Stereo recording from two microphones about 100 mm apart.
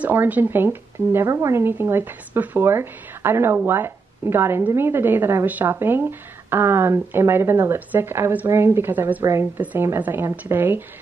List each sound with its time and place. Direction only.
0.0 s a woman's voice: 20° right (ahead or behind)
1.2 s a woman's voice: 30° right (ahead or behind)
9.2 s speech: 30° right (ahead or behind)
9.6 s a woman's voice: 15° right (ahead or behind)